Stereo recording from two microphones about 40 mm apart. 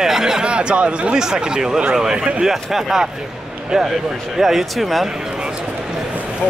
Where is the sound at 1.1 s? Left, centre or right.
Centre.